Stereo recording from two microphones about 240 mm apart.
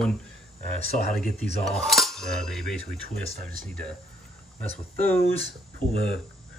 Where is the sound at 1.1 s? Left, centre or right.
Centre.